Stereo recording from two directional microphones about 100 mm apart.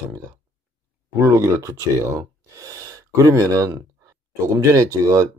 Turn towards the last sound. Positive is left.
turn(degrees=-35)  # may be behind; listen again after turning